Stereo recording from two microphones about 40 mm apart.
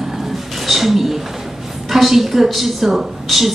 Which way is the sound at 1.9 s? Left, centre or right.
Centre.